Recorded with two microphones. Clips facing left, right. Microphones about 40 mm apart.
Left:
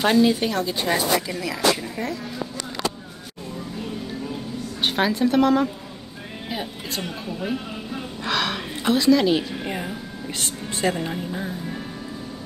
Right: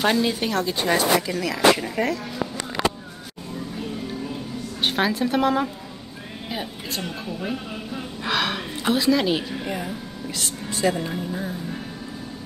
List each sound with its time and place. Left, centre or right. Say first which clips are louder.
0.0 s a woman's voice: left 3 dB; centre
2.0 s speech: right 5 dB; right
4.8 s a woman's voice: left 1 dB; centre
8.2 s speech: even; centre
9.7 s speech: even; centre
10.7 s speech: right 1 dB; left